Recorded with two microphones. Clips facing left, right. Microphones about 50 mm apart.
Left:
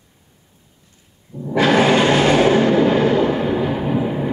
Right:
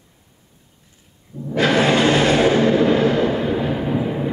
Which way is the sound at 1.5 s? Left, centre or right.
Left.